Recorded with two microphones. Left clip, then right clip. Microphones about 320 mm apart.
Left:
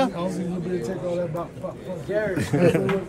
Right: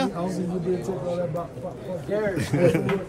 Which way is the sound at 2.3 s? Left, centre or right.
Centre.